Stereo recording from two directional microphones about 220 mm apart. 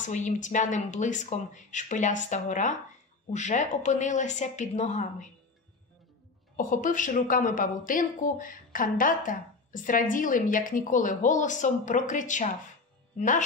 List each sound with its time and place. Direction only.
0.0 s a woman's voice: 35° left (ahead or behind)
6.5 s a woman's voice: 40° left (ahead or behind)